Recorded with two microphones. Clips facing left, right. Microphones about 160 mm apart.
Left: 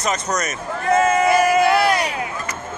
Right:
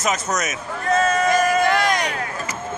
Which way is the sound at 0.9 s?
20° left (ahead or behind).